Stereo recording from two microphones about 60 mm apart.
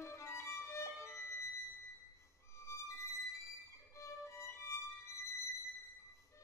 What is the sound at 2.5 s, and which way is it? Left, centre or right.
Music, left.